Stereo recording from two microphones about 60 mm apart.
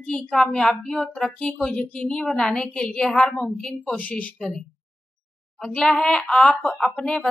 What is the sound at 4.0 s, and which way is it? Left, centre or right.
Speech, left.